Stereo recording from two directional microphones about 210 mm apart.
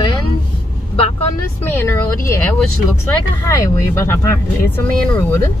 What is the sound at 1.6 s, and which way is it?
Speech, 10° left (ahead or behind).